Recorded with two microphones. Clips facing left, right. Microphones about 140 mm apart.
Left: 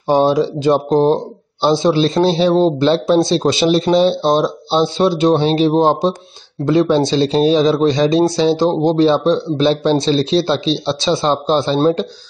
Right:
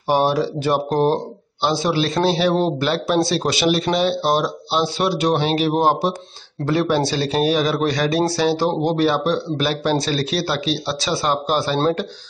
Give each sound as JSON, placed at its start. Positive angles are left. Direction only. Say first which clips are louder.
{"t": 0.1, "sound": "speech", "louder": "left 5 dB", "side_deg": 20}